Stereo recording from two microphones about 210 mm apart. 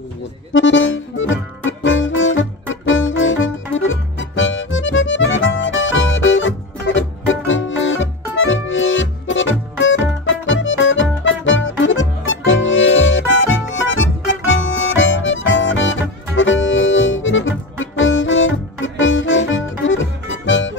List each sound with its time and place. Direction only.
0.5 s accordion: 65° left (ahead or behind)
20.4 s music: 65° left (ahead or behind)